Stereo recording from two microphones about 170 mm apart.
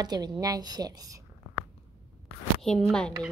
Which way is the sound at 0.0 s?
25° right (ahead or behind).